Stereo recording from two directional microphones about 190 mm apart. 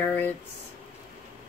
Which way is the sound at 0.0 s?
10° left (ahead or behind).